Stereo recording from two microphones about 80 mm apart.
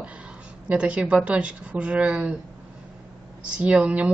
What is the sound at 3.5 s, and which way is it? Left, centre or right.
Speech, centre.